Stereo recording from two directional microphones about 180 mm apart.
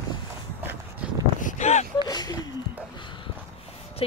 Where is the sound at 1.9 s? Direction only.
20° left (ahead or behind).